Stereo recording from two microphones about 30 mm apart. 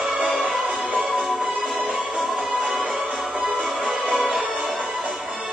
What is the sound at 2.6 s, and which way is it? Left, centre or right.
Music, centre.